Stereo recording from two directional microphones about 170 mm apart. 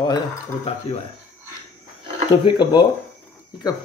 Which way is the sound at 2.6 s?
25° left (ahead or behind).